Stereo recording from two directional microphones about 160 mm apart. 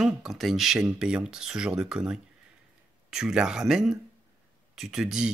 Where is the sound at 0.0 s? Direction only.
Centre (ahead or behind).